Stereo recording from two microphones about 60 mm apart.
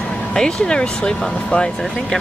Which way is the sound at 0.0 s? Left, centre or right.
Left.